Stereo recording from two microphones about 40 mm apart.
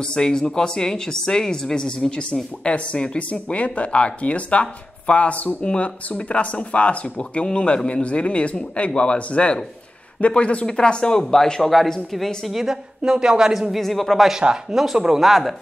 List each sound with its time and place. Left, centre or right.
0.0 s speech: centre
12.4 s speech: centre
13.0 s speech: centre
13.7 s speech: centre
14.7 s speech: centre